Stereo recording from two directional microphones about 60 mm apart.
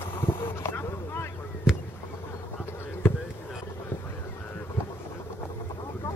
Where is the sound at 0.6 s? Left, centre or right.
Left.